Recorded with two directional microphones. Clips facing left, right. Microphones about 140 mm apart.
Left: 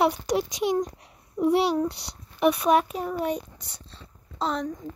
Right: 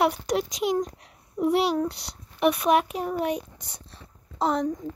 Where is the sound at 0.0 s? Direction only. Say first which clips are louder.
Even; centre (ahead or behind).